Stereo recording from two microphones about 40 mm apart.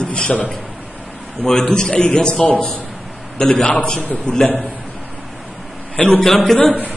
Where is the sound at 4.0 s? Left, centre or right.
Left.